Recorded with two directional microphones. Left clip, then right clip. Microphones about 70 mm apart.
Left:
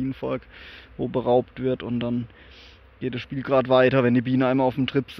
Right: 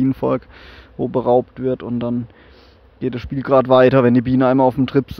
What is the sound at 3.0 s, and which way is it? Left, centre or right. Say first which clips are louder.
Speech: right 6 dB; right.